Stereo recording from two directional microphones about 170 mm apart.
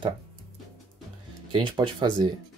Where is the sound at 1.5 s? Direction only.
25° right (ahead or behind).